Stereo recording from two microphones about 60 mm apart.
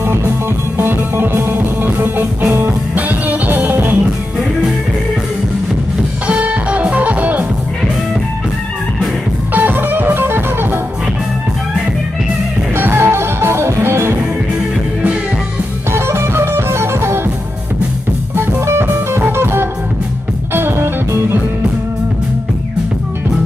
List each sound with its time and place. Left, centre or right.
0.7 s music: right
6.2 s music: right
9.5 s music: right
12.7 s music: right
15.9 s music: right
18.3 s music: right